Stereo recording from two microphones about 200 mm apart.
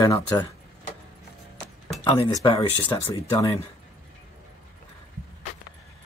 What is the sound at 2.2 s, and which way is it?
Speech, 25° left (ahead or behind).